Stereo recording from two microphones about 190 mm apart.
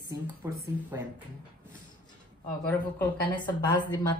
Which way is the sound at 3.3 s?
25° left (ahead or behind).